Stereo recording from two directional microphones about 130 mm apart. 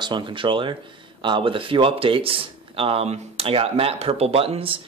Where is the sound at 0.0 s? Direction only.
40° right (ahead or behind).